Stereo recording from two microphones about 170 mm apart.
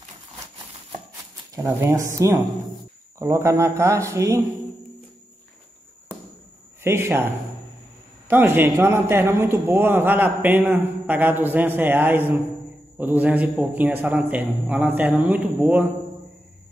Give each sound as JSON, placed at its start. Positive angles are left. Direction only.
{"t": 1.5, "sound": "a man's voice", "side_deg": -15}
{"t": 6.8, "sound": "a man's voice", "side_deg": -15}
{"t": 8.3, "sound": "a man's voice", "side_deg": -10}